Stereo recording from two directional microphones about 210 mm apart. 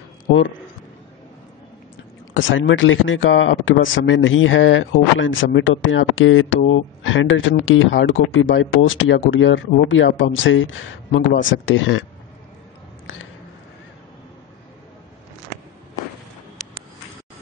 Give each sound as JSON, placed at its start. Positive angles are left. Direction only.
{"t": 2.3, "sound": "speech", "side_deg": 65}